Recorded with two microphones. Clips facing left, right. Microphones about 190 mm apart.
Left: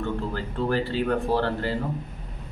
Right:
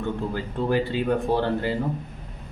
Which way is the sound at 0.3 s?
15° right (ahead or behind).